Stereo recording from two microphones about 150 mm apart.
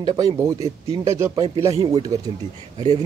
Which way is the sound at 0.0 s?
25° right (ahead or behind).